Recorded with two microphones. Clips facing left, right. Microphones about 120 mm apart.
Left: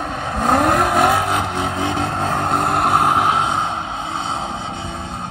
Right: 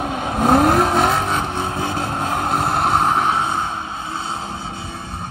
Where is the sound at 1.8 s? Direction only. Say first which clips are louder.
Left 4 dB; 20° left (ahead or behind).